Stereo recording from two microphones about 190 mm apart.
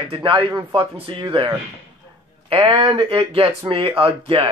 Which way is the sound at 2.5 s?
30° right (ahead or behind).